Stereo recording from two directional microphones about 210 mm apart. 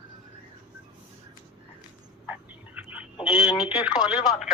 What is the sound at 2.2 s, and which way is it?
Frog, 10° right (ahead or behind).